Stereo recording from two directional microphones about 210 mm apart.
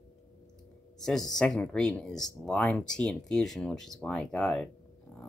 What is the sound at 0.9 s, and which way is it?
Speech, centre (ahead or behind).